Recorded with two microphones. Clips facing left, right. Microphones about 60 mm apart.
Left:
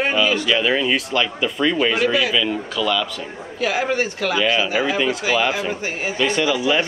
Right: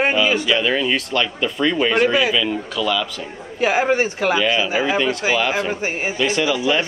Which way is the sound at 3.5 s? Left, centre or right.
Right.